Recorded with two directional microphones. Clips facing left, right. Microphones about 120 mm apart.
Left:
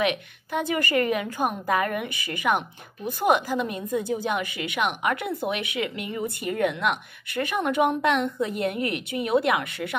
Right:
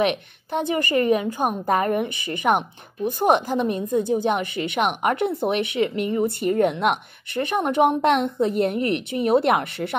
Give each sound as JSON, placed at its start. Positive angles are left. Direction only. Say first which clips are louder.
{"t": 0.0, "sound": "a woman's voice", "louder": "right 3 dB", "side_deg": -30}